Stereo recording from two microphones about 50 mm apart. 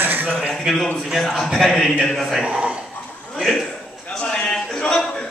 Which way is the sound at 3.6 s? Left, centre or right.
Centre.